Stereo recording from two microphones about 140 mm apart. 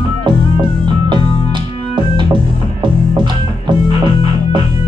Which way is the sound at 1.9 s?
35° right (ahead or behind).